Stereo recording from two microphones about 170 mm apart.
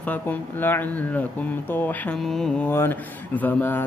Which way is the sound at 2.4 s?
10° left (ahead or behind).